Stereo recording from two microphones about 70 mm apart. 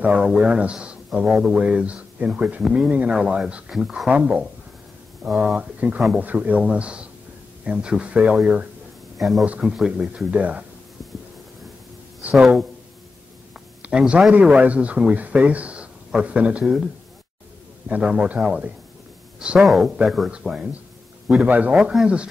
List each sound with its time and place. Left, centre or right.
0.0 s speech: right
3.7 s speech: centre
4.1 s speech: right
5.2 s speech: centre
5.6 s speech: centre
9.2 s speech: centre
9.5 s speech: centre
12.4 s speech: centre
13.5 s a sound: centre
14.3 s speech: centre
18.0 s speech: centre
19.6 s speech: centre
20.2 s speech: centre